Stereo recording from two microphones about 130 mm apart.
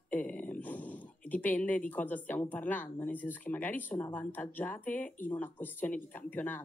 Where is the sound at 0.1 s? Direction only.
10° left (ahead or behind).